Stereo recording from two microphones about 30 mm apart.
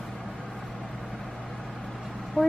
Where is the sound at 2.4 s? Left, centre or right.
Left.